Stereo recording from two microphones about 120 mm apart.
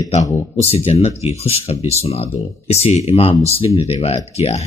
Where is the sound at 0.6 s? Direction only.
55° left (ahead or behind).